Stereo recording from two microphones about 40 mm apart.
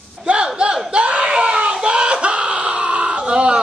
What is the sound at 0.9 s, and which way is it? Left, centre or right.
Screaming, right.